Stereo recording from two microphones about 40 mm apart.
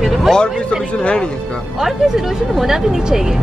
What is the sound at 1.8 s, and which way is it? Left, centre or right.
Speech, centre.